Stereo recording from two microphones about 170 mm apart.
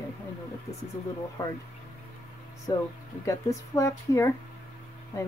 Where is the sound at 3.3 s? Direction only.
20° left (ahead or behind).